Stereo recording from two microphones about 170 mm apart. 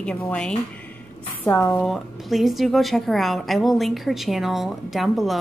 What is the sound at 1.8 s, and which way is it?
A woman's voice, centre (ahead or behind).